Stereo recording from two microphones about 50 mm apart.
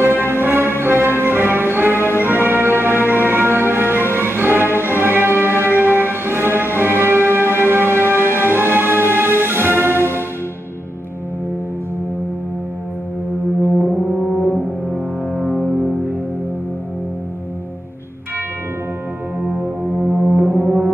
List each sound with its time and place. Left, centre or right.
0.0 s music: right
2.0 s music: left
2.2 s music: right
19.6 s music: right